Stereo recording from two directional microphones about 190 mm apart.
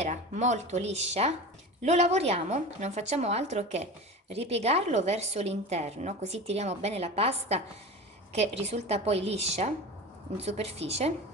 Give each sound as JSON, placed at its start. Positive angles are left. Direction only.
{"t": 0.0, "sound": "a woman's voice", "side_deg": -40}